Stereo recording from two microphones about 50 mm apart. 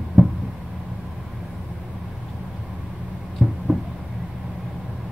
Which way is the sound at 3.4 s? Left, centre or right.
Right.